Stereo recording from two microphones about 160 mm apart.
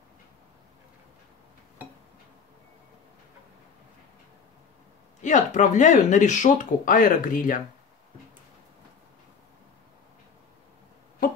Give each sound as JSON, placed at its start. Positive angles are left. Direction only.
{"t": 5.2, "sound": "speech", "side_deg": 50}